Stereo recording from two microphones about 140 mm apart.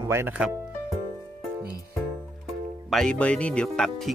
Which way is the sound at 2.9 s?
5° left (ahead or behind).